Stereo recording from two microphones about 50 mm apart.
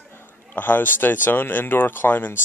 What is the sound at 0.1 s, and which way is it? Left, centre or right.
Speech, left.